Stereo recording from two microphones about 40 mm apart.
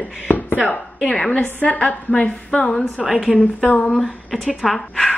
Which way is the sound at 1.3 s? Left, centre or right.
Left.